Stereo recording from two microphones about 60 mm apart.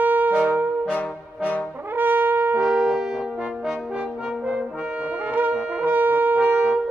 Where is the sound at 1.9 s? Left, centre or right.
Right.